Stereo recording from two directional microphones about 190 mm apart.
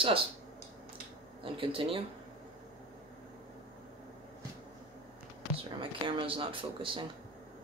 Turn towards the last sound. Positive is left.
turn(degrees=-25)  # may be behind; listen again after turning